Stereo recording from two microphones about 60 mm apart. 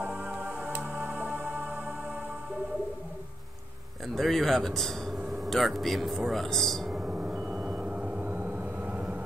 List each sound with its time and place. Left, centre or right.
0.0 s music: right
4.1 s a man's voice: centre
6.9 s vehicle: centre
8.2 s vehicle: right